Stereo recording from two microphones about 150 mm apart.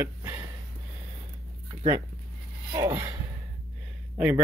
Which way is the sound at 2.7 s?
20° right (ahead or behind).